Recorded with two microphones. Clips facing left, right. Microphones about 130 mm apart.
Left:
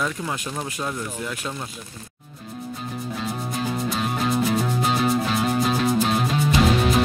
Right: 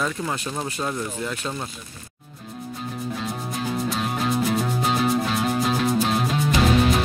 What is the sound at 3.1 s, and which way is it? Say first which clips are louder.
Music: left 3 dB; centre (ahead or behind).